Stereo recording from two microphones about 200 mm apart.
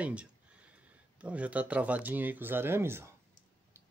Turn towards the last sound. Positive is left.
turn(degrees=-10)  # may be behind; listen again after turning